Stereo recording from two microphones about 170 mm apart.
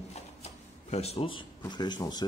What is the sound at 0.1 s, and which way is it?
Shuffling cards, 40° left (ahead or behind).